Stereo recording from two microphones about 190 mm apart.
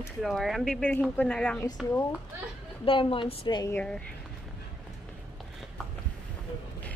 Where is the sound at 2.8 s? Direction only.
30° left (ahead or behind).